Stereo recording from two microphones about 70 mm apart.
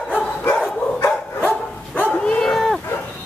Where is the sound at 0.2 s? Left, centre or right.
Left.